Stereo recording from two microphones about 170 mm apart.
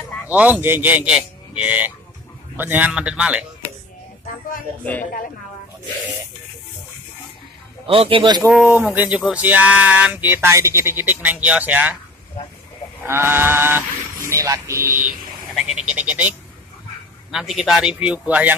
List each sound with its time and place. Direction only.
0.3 s speech: 10° right (ahead or behind)
7.8 s a man's voice: 30° right (ahead or behind)
8.9 s speech: 10° right (ahead or behind)
13.0 s speech: 15° right (ahead or behind)
15.5 s speech: 5° right (ahead or behind)